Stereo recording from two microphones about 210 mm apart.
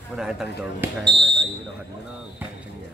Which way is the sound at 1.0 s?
25° right (ahead or behind).